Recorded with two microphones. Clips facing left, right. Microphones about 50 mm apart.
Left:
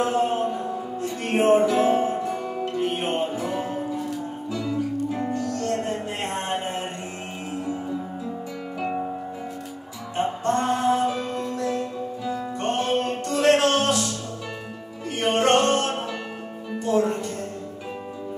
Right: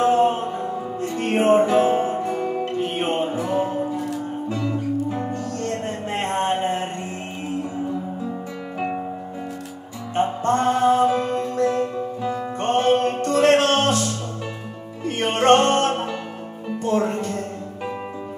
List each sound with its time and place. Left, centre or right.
0.0 s music: right
10.1 s music: right
15.0 s music: right